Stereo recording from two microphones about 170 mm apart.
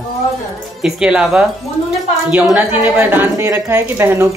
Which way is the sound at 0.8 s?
5° right (ahead or behind).